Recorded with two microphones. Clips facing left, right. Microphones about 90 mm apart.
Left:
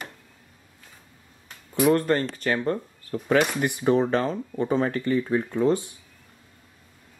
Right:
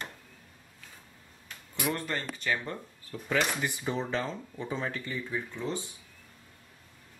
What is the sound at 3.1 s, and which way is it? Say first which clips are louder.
Speech: left 8 dB; 65° left (ahead or behind).